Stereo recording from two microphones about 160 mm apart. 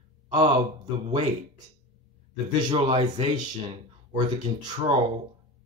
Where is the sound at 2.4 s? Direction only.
30° right (ahead or behind).